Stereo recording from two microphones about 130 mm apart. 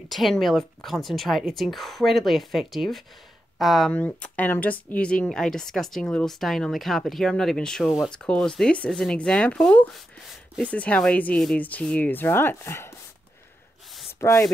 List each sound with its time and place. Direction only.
0.1 s speech: centre (ahead or behind)
3.9 s speech: 10° left (ahead or behind)
14.2 s speech: 20° left (ahead or behind)